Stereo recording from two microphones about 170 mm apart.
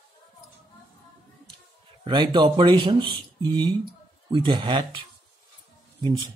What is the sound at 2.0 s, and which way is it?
Speech, 25° right (ahead or behind).